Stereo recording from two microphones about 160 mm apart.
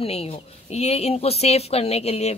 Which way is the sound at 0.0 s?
40° left (ahead or behind).